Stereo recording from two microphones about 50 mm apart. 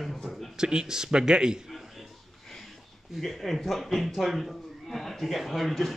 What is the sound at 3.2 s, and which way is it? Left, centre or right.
A man's voice, centre.